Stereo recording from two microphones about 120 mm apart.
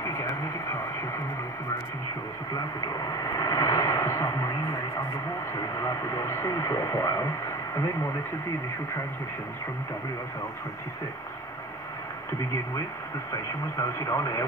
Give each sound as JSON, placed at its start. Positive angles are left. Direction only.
{"t": 0.0, "sound": "radio", "side_deg": 25}
{"t": 3.1, "sound": "vehicle", "side_deg": 25}
{"t": 5.5, "sound": "radio", "side_deg": 25}
{"t": 13.7, "sound": "speech", "side_deg": 25}